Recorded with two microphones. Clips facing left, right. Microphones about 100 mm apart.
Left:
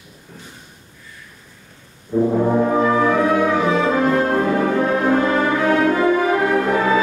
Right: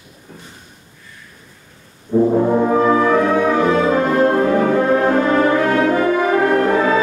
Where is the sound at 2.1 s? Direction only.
20° right (ahead or behind).